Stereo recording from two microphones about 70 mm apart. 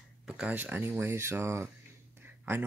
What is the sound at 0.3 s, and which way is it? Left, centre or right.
Speech, right.